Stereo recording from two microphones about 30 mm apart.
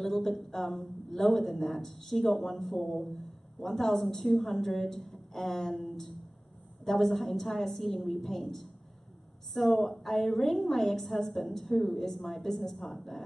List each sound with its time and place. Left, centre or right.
0.0 s a woman's voice: centre
2.8 s speech: left
3.1 s a woman's voice: centre